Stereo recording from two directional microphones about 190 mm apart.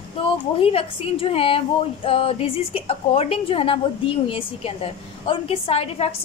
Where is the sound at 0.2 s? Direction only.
30° left (ahead or behind).